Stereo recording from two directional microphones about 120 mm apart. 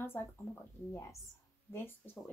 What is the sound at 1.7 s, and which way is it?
Speech, 15° left (ahead or behind).